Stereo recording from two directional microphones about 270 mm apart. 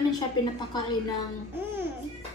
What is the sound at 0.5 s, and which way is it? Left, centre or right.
Speech, centre.